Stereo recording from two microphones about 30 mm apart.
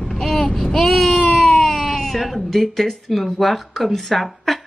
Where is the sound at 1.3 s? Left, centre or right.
Centre.